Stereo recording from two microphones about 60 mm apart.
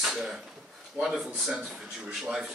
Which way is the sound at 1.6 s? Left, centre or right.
Right.